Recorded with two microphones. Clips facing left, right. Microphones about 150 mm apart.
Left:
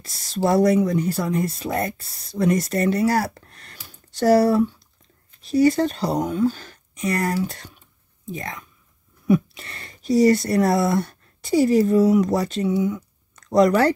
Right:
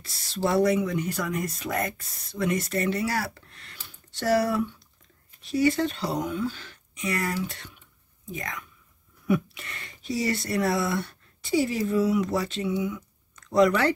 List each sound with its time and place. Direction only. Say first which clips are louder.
0.0 s speech: left 5 dB; 40° left (ahead or behind)